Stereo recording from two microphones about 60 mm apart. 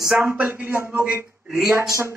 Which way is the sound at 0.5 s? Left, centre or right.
Right.